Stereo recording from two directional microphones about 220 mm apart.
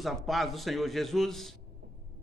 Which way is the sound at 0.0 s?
Centre (ahead or behind).